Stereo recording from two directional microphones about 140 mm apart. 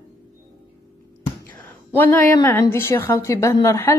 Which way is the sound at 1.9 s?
15° left (ahead or behind).